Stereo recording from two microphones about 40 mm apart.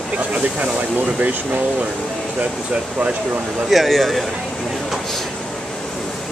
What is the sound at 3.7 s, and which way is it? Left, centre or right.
Speech, centre.